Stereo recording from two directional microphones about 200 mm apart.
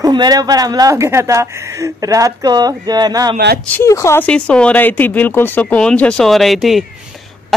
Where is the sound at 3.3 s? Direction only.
50° right (ahead or behind).